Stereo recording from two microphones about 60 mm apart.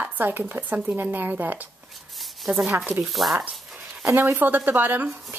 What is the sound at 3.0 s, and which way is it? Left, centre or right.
Speech, centre.